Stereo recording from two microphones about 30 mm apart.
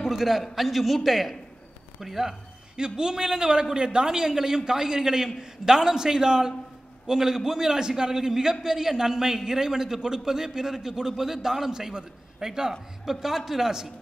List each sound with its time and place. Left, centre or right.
0.1 s a man's voice: centre
2.0 s a sound: centre
2.8 s a man's voice: right
4.1 s a man's voice: centre